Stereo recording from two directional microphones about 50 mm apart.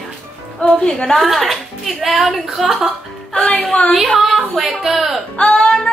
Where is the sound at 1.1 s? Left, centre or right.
Centre.